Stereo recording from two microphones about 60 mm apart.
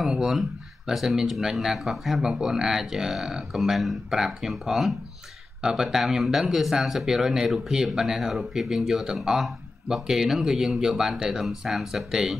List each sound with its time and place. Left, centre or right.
0.0 s speech: centre